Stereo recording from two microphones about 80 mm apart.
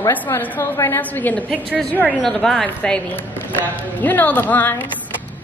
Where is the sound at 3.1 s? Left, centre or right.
Left.